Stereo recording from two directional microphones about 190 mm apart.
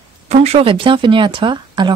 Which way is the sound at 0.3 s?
35° right (ahead or behind).